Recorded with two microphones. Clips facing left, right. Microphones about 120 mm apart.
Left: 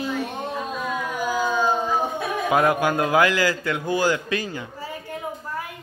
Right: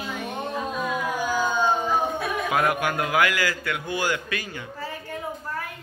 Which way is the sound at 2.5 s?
25° left (ahead or behind).